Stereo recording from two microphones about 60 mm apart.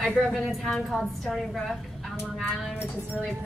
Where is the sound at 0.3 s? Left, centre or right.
Centre.